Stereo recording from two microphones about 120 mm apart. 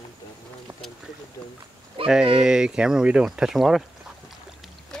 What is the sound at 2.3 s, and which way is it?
Speech, 5° right (ahead or behind).